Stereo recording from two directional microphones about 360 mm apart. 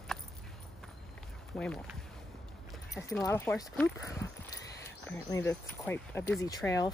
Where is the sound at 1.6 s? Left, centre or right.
Centre.